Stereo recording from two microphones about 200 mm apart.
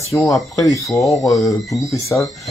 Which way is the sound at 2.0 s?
15° left (ahead or behind).